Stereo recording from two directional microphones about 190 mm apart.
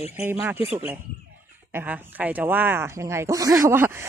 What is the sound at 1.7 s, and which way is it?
Speech, 10° right (ahead or behind).